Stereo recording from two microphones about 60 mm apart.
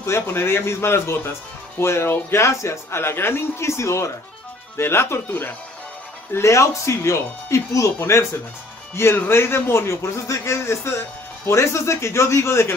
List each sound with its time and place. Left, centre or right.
0.0 s speech: left
6.3 s speech: left